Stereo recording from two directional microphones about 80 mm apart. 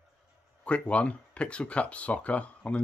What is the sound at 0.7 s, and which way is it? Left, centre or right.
Speech, centre.